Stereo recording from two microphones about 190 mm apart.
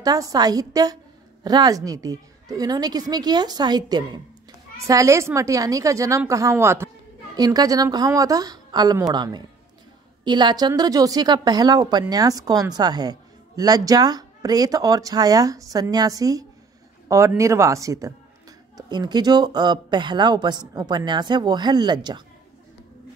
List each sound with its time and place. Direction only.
0.0 s a woman's voice: 20° right (ahead or behind)